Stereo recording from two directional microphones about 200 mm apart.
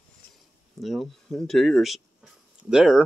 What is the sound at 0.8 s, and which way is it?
Speech, centre (ahead or behind).